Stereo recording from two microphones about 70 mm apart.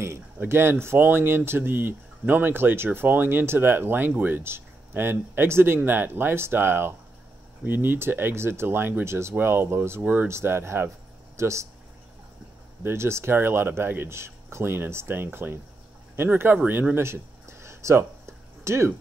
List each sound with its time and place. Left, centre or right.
0.4 s speech: right
12.8 s speech: right
16.9 s a sound: right